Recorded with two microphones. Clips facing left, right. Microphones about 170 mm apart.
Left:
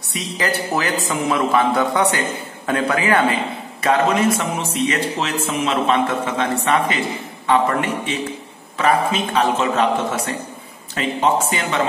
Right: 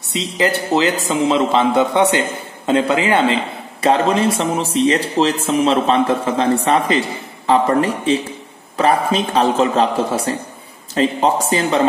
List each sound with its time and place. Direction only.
0.1 s a man's voice: 25° right (ahead or behind)